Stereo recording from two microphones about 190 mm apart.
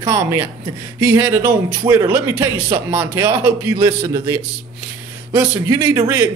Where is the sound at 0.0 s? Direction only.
15° right (ahead or behind).